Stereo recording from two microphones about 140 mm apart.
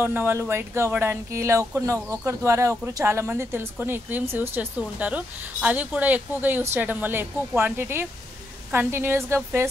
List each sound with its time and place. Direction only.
0.0 s speech: 15° right (ahead or behind)